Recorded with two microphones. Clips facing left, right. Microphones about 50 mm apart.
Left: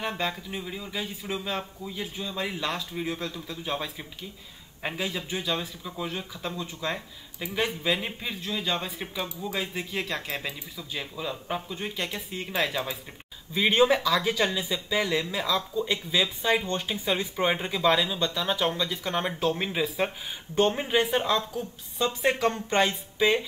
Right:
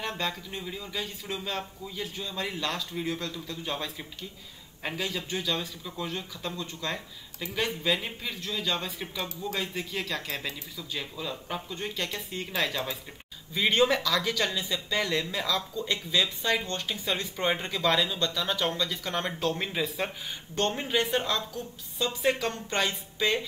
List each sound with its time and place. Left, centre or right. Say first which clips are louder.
0.0 s speech: left 2 dB; centre
22.2 s speech: left 3 dB; left
22.8 s speech: left 4 dB; centre